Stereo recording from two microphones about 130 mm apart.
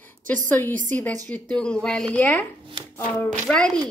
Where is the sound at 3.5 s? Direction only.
5° left (ahead or behind).